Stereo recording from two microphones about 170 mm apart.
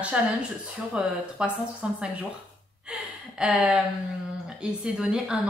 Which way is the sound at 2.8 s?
5° right (ahead or behind).